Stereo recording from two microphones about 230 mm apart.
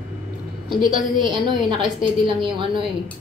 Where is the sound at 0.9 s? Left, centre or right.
Right.